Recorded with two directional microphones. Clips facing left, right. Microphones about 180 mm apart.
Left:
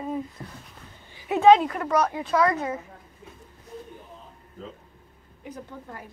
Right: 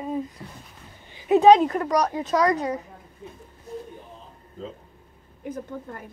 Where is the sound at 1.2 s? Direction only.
20° right (ahead or behind).